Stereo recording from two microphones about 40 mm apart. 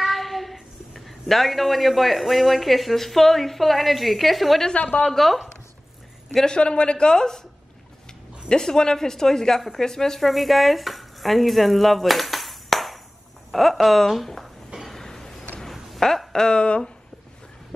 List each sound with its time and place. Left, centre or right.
0.0 s a woman's voice: centre
4.7 s a woman's voice: left
5.1 s a woman's voice: centre
6.4 s speech: left
8.5 s a woman's voice: centre
14.9 s vehicle: centre
16.0 s a sound: centre
16.4 s speech: left